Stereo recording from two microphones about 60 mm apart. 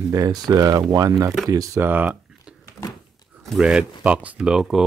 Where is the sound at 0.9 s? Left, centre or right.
Right.